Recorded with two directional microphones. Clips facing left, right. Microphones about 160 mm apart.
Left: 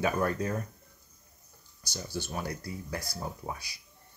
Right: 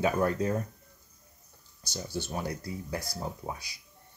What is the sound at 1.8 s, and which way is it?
Speech, 25° right (ahead or behind).